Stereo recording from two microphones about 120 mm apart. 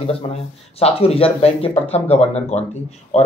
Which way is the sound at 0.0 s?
55° left (ahead or behind).